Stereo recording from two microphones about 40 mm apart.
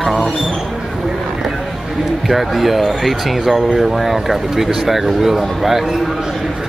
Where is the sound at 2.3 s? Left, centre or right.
Centre.